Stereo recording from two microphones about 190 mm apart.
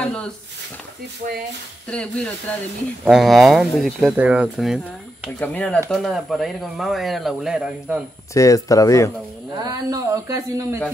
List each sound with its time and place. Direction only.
1.9 s speech: 5° left (ahead or behind)
5.4 s speech: 5° left (ahead or behind)
8.3 s speech: 15° left (ahead or behind)
9.6 s speech: 20° right (ahead or behind)